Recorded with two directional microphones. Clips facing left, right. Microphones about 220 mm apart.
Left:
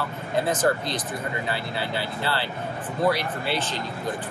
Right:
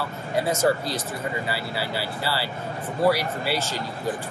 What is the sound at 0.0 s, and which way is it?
Speech, 10° right (ahead or behind).